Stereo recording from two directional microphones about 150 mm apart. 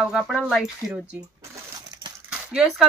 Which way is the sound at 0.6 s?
5° right (ahead or behind).